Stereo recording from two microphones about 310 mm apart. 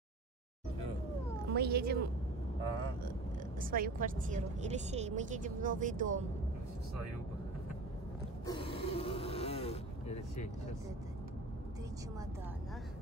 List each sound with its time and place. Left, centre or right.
1.5 s speech: right
3.7 s a woman's voice: right
8.5 s a sound: centre